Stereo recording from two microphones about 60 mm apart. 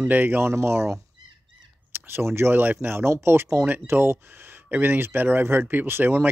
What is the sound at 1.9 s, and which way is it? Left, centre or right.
Speech, right.